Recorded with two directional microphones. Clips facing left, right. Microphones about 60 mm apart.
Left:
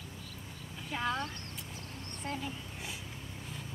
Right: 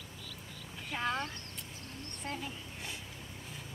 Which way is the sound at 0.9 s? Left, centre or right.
Centre.